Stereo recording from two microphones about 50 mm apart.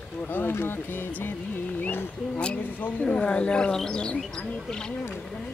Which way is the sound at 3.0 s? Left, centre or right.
Left.